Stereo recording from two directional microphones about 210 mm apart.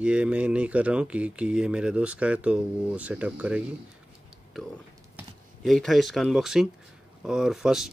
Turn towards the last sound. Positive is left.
turn(degrees=0)  # may be behind; listen again after turning